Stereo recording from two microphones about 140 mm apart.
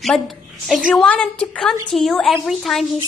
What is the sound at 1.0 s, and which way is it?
A woman's voice, 10° left (ahead or behind).